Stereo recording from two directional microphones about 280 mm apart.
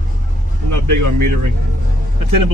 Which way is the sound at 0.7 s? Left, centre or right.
Right.